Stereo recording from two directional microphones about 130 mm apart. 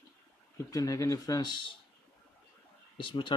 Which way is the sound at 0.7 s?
25° left (ahead or behind).